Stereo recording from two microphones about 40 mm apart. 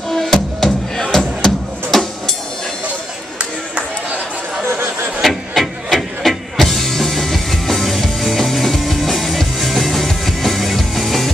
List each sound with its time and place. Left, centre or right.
0.1 s music: centre
4.6 s a sound: right
5.2 s music: centre